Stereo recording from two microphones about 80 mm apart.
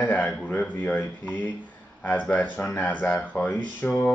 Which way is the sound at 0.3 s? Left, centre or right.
Centre.